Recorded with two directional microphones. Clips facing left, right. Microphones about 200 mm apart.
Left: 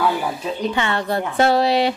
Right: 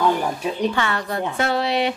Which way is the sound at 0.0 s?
10° left (ahead or behind).